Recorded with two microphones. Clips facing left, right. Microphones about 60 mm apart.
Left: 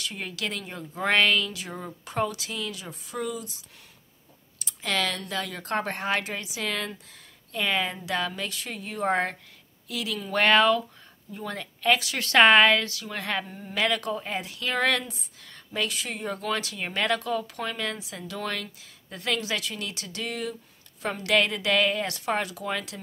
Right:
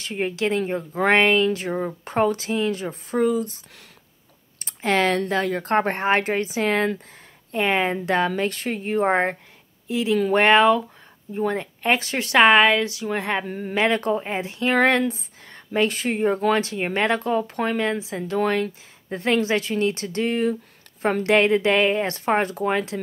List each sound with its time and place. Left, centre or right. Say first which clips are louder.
0.0 s a woman's voice: right 9 dB; right
12.2 s a woman's voice: right 3 dB; centre
13.5 s speech: right 11 dB; right
13.7 s speech: right 6 dB; right